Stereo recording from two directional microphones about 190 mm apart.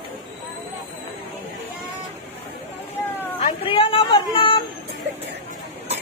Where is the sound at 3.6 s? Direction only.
30° left (ahead or behind).